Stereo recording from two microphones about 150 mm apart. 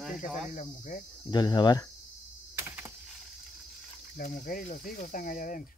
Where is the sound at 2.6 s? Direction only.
15° right (ahead or behind).